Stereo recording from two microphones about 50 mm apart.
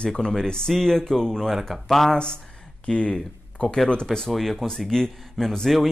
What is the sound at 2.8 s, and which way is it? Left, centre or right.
Speech, centre.